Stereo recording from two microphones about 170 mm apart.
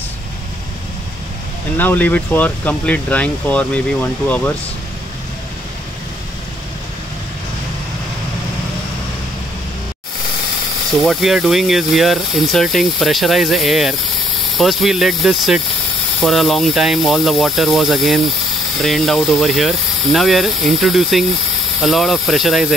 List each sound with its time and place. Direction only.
1.8 s speech: 10° left (ahead or behind)
11.0 s speech: centre (ahead or behind)